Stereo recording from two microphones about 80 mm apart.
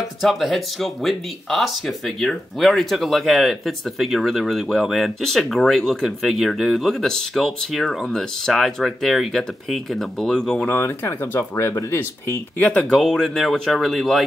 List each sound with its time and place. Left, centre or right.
0.0 s speech: centre
10.7 s speech: left; by 14.2 s centre